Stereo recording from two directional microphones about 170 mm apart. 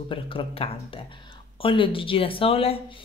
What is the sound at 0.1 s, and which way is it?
Speech, 30° left (ahead or behind).